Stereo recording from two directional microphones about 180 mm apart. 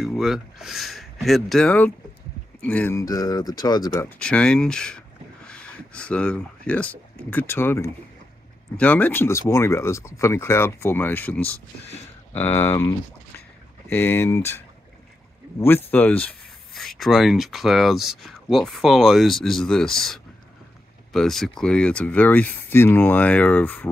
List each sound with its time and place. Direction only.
0.0 s speech: centre (ahead or behind); by 4.1 s 20° left (ahead or behind)
4.2 s speech: 5° left (ahead or behind)
15.6 s speech: 10° left (ahead or behind)